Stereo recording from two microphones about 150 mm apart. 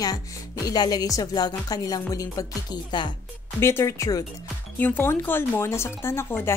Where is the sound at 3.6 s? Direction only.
20° left (ahead or behind).